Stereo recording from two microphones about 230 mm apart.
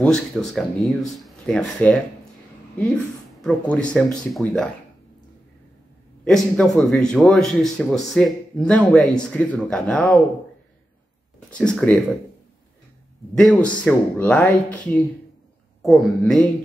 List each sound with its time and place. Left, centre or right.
0.0 s speech: centre
3.3 s speech: centre
6.2 s speech: centre
11.3 s speech: centre
13.3 s speech: centre